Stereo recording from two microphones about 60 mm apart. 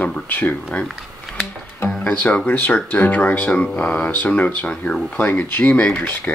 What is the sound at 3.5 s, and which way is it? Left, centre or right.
Speech, centre.